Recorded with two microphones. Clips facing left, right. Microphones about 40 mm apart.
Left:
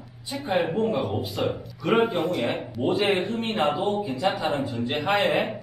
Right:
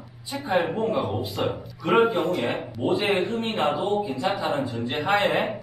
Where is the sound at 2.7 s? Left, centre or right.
Centre.